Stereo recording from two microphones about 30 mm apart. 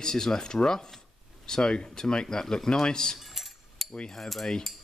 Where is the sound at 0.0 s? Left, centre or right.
Centre.